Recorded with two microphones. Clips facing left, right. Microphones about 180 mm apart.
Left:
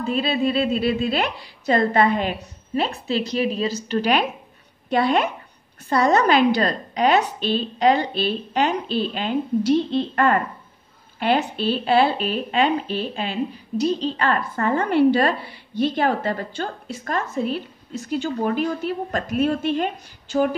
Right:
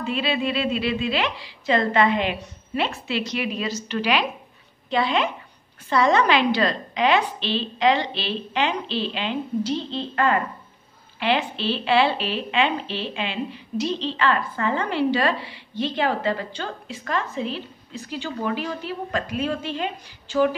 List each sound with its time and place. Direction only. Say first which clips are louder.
0.0 s a woman's voice: left 3 dB; 40° left (ahead or behind)